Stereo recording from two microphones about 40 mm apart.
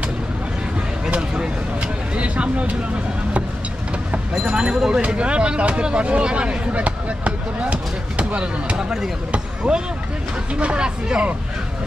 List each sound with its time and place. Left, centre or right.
1.1 s a sound: right
4.3 s speech: centre
5.0 s speech: right
8.7 s speech: centre
9.6 s speech: right